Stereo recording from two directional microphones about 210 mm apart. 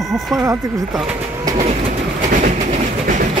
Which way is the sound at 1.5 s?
30° right (ahead or behind).